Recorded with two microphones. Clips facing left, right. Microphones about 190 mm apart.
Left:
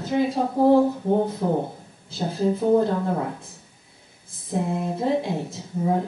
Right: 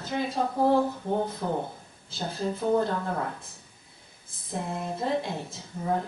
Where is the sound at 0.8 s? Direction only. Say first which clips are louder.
Left 7 dB; 25° left (ahead or behind).